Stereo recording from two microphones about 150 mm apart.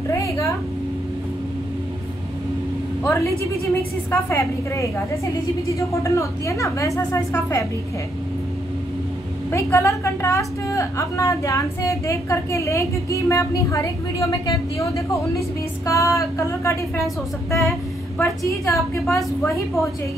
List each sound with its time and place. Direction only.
0.1 s a sound: 20° left (ahead or behind)
3.0 s a woman's voice: 20° left (ahead or behind)
9.5 s a woman's voice: 20° left (ahead or behind)
18.7 s a woman's voice: centre (ahead or behind)
19.4 s a woman's voice: 20° left (ahead or behind)